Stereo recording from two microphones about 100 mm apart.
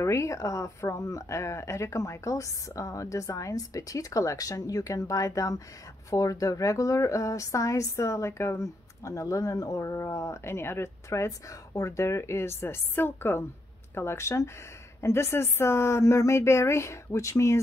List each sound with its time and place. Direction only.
0.0 s speech: 30° left (ahead or behind)